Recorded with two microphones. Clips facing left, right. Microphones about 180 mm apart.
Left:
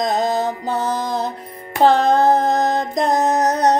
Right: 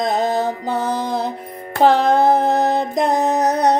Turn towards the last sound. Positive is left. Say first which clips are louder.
# even
turn(degrees=-10)  # may be behind; listen again after turning